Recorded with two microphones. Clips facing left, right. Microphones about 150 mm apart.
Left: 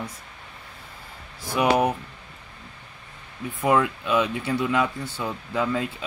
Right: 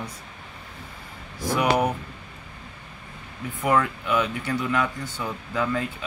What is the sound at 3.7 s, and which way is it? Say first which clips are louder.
Speech: left 1 dB; 20° left (ahead or behind).